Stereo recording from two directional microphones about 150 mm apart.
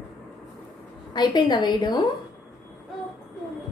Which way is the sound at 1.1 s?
30° left (ahead or behind).